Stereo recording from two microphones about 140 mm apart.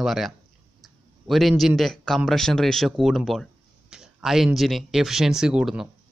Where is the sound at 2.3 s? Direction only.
5° left (ahead or behind).